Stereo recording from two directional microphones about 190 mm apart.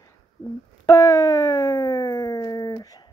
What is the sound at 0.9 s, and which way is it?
Speech, 20° left (ahead or behind).